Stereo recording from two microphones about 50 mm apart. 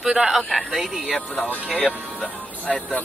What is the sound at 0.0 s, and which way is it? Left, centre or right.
Speech, centre.